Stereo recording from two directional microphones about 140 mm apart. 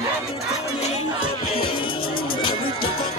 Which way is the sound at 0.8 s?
45° left (ahead or behind).